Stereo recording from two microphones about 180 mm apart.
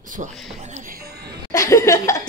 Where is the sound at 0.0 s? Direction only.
45° right (ahead or behind).